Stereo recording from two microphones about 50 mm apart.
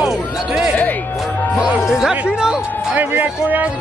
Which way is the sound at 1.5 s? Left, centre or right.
Right.